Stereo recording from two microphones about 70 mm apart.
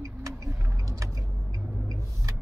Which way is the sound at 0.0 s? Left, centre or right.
Right.